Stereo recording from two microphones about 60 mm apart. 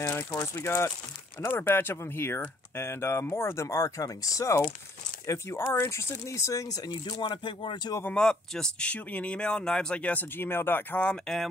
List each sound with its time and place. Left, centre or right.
0.3 s speech: left
1.5 s speech: left
5.2 s speech: left
8.1 s speech: centre
10.3 s speech: left
11.1 s speech: centre